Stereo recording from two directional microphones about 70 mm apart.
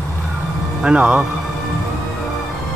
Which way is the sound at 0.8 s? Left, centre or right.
Centre.